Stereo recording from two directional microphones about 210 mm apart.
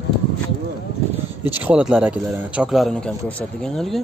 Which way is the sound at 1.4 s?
10° right (ahead or behind).